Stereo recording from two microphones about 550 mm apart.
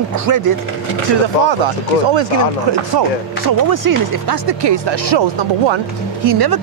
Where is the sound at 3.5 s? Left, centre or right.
Right.